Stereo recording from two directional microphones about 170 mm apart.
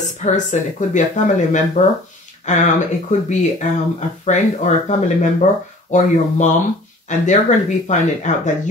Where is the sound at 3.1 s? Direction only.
45° left (ahead or behind).